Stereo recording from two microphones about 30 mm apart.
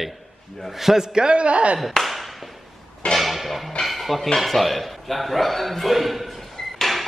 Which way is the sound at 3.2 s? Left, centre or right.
Centre.